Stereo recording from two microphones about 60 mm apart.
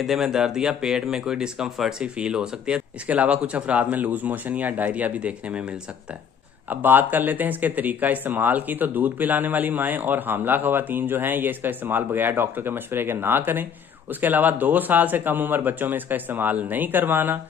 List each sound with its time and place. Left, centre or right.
0.0 s speech: centre
6.7 s speech: right